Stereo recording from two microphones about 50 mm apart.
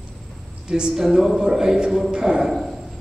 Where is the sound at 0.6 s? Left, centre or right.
Centre.